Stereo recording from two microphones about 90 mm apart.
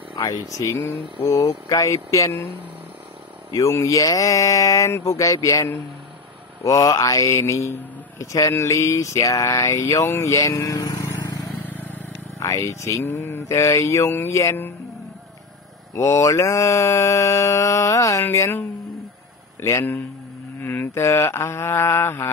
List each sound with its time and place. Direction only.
0.6 s mantra: 35° left (ahead or behind)
3.5 s mantra: 35° left (ahead or behind)
10.0 s speech: 30° left (ahead or behind)
11.6 s vehicle: 20° left (ahead or behind)
12.4 s mantra: 35° left (ahead or behind)
15.9 s mantra: 35° left (ahead or behind)